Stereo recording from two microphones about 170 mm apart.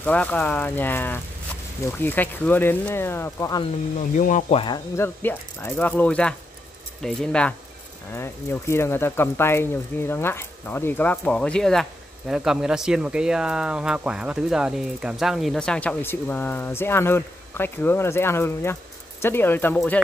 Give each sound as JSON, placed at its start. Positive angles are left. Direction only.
{"t": 0.0, "sound": "speech", "side_deg": 10}
{"t": 4.2, "sound": "speech", "side_deg": 45}
{"t": 4.6, "sound": "speech", "side_deg": 25}
{"t": 4.9, "sound": "speech", "side_deg": 10}
{"t": 8.1, "sound": "speech", "side_deg": 15}